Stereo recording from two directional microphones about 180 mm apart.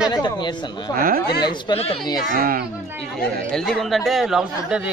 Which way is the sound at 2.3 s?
55° right (ahead or behind).